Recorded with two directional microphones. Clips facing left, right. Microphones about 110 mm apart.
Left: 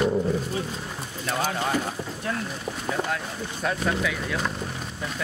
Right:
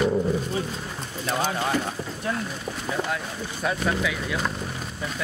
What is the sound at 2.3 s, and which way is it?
Speech, 15° right (ahead or behind).